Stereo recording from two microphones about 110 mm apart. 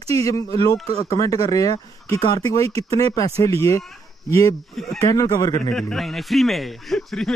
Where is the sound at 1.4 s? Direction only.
35° left (ahead or behind).